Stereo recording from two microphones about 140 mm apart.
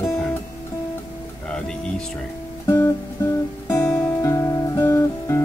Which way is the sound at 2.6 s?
20° left (ahead or behind).